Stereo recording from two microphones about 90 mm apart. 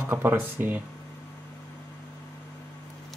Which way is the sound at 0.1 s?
25° right (ahead or behind).